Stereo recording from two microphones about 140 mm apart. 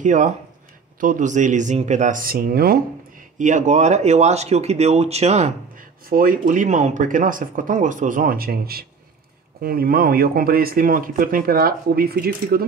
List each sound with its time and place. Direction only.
0.0 s speech: 60° right (ahead or behind); by 2.8 s 90° right
3.3 s speech: 60° right (ahead or behind)
5.8 s speech: 90° right